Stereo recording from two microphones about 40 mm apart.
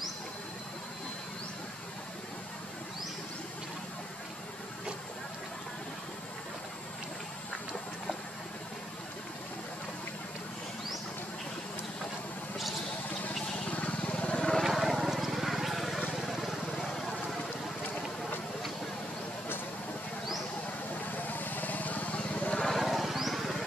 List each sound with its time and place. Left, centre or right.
13.7 s vehicle: left
14.6 s vehicle: centre
21.3 s vehicle: left
22.8 s a sound: centre